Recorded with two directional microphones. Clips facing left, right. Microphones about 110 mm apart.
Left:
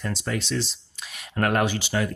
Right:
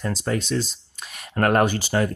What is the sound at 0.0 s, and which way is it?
Speech, 40° right (ahead or behind).